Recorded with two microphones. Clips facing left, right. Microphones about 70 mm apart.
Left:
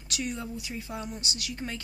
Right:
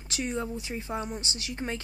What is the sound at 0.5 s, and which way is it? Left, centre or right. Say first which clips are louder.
Speech: right 3 dB; right.